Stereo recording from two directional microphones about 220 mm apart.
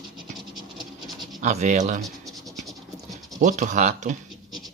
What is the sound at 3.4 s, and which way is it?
Speech, 35° right (ahead or behind).